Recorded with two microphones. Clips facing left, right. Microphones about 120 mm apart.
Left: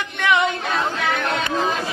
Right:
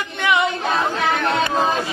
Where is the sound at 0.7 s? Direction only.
35° right (ahead or behind).